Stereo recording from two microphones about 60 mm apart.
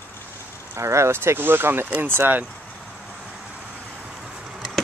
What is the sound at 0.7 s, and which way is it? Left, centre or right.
Speech, right.